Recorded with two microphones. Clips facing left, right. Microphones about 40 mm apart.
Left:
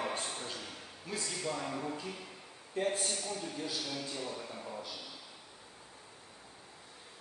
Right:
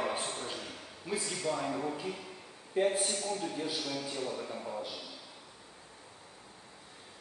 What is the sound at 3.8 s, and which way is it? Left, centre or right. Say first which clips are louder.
A man's voice: right 3 dB; centre.